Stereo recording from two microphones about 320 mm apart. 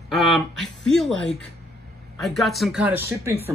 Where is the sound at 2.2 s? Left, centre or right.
Centre.